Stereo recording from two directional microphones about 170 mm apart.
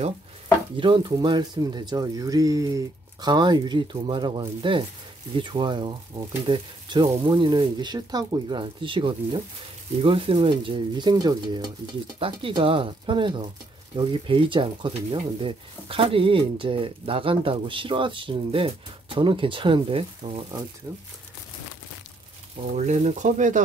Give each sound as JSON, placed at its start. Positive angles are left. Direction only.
{"t": 0.7, "sound": "speech", "side_deg": -30}
{"t": 22.8, "sound": "speech", "side_deg": -45}